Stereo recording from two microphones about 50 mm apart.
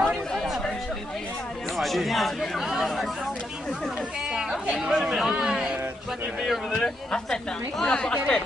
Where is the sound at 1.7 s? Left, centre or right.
Centre.